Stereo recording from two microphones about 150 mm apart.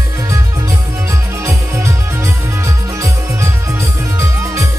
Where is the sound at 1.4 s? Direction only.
20° right (ahead or behind).